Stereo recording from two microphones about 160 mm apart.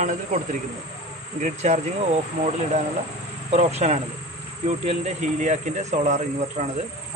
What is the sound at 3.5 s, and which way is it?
Speech, 45° right (ahead or behind).